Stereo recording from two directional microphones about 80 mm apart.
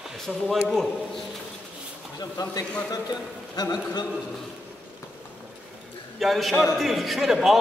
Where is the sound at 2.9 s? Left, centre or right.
Left.